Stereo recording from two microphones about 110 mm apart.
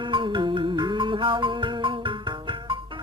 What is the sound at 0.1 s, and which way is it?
Music, 45° right (ahead or behind).